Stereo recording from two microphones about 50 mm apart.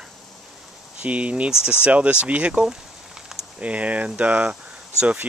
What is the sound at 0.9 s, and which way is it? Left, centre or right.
Speech, right.